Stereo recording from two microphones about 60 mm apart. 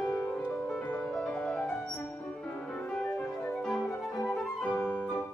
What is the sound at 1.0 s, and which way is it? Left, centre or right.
Music, centre.